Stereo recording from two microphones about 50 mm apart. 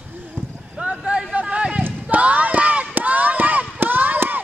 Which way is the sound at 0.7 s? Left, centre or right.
Right.